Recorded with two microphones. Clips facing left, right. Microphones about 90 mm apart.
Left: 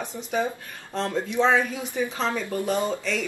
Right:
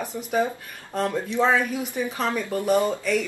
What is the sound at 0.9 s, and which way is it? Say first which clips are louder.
Speech: right 2 dB; 10° right (ahead or behind).